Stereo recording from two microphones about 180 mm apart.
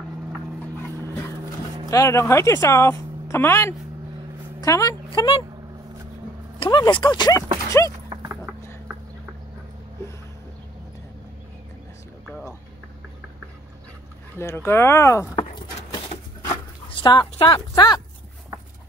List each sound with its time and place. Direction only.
1.9 s a woman's voice: 15° left (ahead or behind)
6.6 s speech: 25° left (ahead or behind)
8.1 s dog: 15° right (ahead or behind)
14.4 s speech: 15° left (ahead or behind)
15.3 s keys jangling: 25° left (ahead or behind)
16.9 s speech: 25° left (ahead or behind)